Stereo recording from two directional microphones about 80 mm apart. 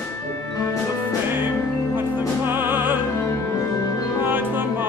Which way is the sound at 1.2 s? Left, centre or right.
Right.